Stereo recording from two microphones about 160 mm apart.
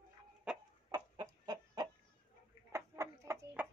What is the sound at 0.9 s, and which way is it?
Chicken, 25° right (ahead or behind).